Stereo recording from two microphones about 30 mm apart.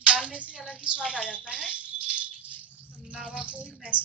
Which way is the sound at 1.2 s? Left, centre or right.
Left.